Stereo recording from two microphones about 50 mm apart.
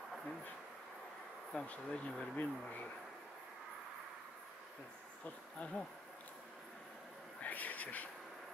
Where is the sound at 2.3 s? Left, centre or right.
Left.